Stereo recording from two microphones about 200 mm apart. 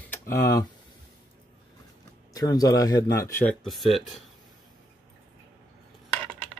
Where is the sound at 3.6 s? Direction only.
Centre (ahead or behind).